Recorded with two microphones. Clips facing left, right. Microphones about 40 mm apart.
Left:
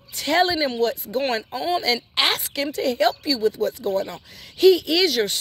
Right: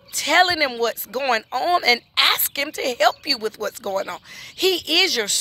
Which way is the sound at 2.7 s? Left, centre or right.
Right.